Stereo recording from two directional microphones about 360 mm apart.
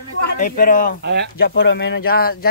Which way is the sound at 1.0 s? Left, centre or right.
Right.